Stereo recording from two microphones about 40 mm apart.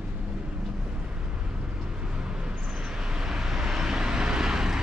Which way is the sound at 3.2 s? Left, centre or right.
Centre.